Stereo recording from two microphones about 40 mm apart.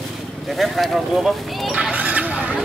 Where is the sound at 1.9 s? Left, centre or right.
Right.